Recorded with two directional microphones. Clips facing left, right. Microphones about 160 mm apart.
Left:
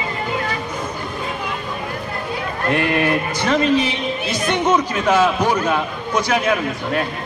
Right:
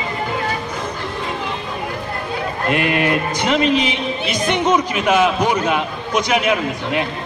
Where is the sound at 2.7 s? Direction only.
15° right (ahead or behind).